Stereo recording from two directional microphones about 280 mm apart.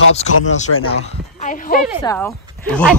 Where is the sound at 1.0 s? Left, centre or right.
Left.